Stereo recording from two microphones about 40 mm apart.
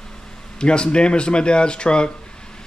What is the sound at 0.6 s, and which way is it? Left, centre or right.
Speech, left.